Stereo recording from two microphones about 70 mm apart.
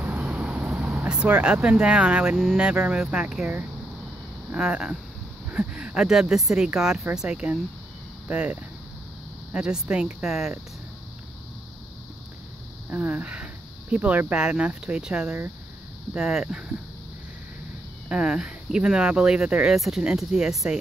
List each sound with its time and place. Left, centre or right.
0.3 s vehicle: centre
1.0 s speech: centre
4.5 s speech: centre
12.9 s speech: centre
18.0 s speech: centre